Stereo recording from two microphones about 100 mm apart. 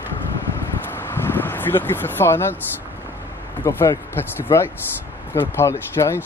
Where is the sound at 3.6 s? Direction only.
25° left (ahead or behind).